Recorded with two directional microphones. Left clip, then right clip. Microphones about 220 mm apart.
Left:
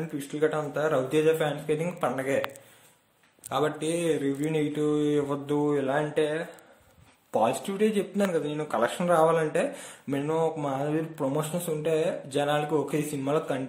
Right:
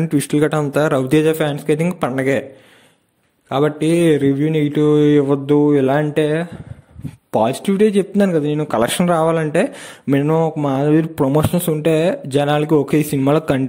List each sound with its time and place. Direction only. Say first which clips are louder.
0.1 s speech: right 10 dB; 45° right (ahead or behind)
3.4 s speech: right 11 dB; 35° right (ahead or behind)